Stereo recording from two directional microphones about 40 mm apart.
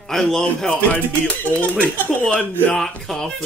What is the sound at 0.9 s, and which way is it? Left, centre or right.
Music, left.